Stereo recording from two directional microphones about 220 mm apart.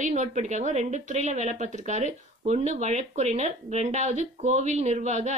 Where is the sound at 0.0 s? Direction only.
30° right (ahead or behind).